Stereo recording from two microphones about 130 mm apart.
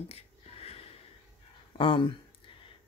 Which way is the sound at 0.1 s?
50° left (ahead or behind).